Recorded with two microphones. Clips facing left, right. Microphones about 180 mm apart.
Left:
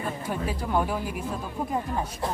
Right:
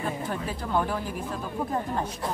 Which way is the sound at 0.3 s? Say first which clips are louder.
Left 5 dB; 10° left (ahead or behind).